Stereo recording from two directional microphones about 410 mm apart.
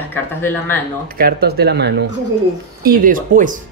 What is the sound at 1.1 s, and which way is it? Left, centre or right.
Speech, right.